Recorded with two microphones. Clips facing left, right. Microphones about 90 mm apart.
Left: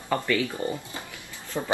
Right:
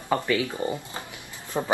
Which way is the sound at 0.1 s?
20° right (ahead or behind).